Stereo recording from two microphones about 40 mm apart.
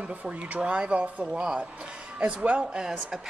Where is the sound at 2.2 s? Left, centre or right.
Right.